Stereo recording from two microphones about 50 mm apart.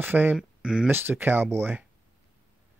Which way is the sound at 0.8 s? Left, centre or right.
Right.